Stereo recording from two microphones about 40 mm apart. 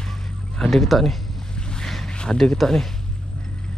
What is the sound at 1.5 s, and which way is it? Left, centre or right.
Boat, centre.